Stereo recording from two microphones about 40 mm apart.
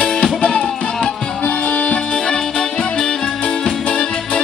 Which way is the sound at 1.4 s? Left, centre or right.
Left.